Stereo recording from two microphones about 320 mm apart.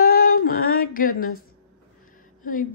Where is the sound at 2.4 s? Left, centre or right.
Left.